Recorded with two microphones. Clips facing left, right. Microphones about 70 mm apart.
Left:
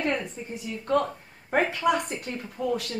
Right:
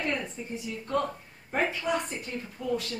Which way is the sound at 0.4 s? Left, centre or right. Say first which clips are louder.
Left 1 dB; left.